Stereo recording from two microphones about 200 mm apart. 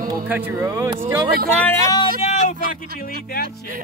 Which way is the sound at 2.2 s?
40° left (ahead or behind).